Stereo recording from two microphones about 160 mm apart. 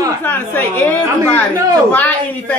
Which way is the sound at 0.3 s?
10° left (ahead or behind).